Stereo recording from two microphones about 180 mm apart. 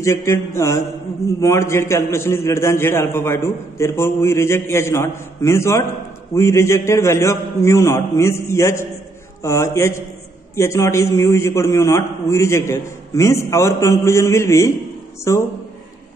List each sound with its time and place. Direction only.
0.0 s a man's voice: 15° left (ahead or behind)